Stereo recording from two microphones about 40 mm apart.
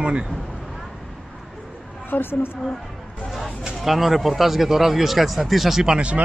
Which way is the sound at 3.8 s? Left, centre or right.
Centre.